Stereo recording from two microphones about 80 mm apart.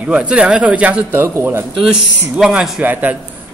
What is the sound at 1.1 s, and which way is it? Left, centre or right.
Speech, right.